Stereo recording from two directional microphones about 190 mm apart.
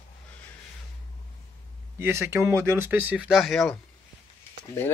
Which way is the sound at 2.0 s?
15° right (ahead or behind).